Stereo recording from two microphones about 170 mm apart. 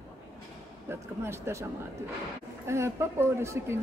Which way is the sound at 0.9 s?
15° right (ahead or behind).